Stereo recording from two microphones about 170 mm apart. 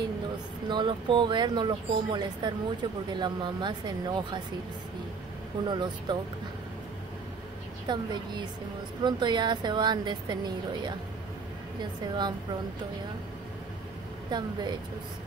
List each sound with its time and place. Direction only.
0.7 s speech: 30° right (ahead or behind)
5.7 s speech: 25° right (ahead or behind)
7.8 s speech: 25° right (ahead or behind)
14.3 s speech: 25° right (ahead or behind)